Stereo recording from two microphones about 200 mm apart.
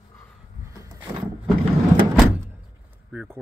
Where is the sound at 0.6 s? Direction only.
15° right (ahead or behind).